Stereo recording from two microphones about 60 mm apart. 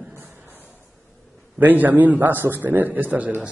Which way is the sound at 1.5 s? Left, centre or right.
Right.